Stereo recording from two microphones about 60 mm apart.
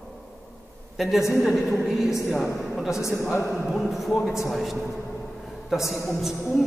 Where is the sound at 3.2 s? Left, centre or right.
Left.